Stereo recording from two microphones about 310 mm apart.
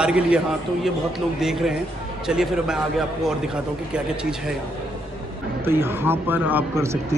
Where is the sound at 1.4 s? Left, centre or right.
Centre.